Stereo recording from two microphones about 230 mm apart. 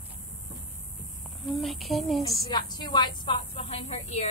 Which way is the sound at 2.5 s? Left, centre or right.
Centre.